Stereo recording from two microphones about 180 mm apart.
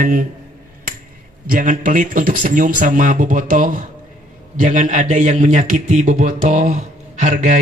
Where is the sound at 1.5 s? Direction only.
50° right (ahead or behind).